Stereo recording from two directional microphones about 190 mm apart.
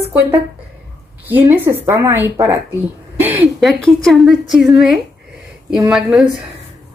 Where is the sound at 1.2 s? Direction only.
10° right (ahead or behind).